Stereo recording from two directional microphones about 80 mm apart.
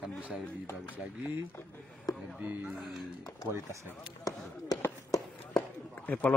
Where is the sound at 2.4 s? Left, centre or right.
Centre.